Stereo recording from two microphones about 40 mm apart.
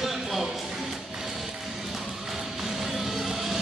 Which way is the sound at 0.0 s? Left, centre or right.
Centre.